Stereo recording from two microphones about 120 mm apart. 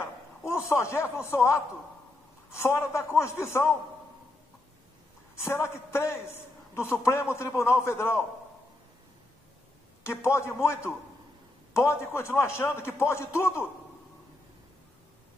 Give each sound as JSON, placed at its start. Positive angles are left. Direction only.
{"t": 0.5, "sound": "a man's voice", "side_deg": 25}
{"t": 2.6, "sound": "a man's voice", "side_deg": 20}
{"t": 5.3, "sound": "a man's voice", "side_deg": 20}
{"t": 10.0, "sound": "a man's voice", "side_deg": 20}